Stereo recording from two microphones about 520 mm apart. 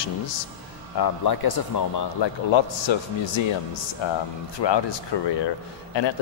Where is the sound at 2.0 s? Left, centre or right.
Left.